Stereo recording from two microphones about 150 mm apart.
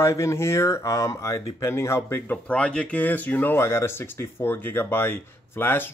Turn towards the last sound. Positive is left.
turn(degrees=15)  # may be behind; listen again after turning